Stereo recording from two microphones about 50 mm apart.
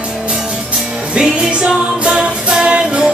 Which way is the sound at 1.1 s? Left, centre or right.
Centre.